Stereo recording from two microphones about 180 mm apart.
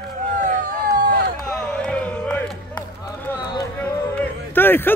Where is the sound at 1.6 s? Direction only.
5° left (ahead or behind).